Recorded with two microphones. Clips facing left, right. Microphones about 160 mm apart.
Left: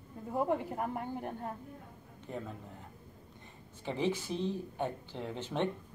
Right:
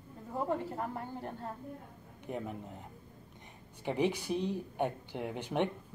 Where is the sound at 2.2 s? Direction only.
15° right (ahead or behind).